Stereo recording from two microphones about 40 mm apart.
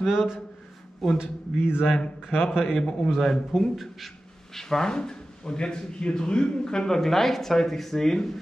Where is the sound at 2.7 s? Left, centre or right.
Centre.